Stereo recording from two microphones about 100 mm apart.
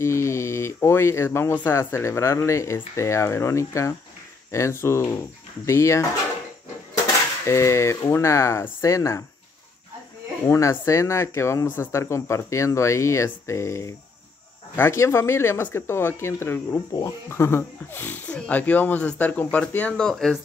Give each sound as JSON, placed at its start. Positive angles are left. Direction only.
{"t": 0.0, "sound": "speech", "side_deg": 30}
{"t": 7.4, "sound": "speech", "side_deg": 30}
{"t": 10.4, "sound": "speech", "side_deg": 30}